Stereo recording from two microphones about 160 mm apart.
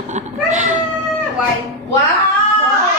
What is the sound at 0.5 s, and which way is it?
Cat, 45° right (ahead or behind).